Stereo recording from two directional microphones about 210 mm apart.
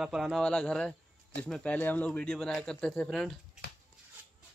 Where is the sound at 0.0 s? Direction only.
Centre (ahead or behind).